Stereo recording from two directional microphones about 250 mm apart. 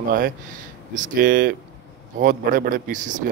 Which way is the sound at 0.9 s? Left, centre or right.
Right.